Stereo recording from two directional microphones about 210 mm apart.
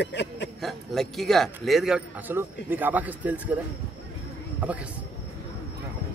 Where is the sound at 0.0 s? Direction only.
55° left (ahead or behind).